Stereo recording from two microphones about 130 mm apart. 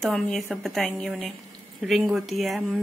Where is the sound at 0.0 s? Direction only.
5° left (ahead or behind).